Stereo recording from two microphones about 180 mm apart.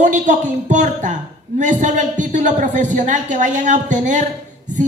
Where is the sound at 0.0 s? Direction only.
45° right (ahead or behind).